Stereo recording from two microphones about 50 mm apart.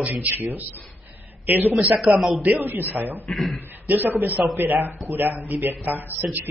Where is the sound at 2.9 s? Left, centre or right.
Right.